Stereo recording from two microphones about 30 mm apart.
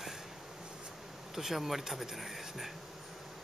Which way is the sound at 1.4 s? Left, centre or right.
Centre.